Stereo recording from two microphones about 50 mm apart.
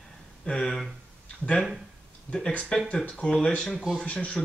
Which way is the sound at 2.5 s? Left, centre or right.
Left.